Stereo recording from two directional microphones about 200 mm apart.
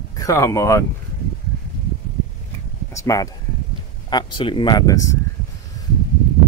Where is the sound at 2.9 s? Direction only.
15° left (ahead or behind).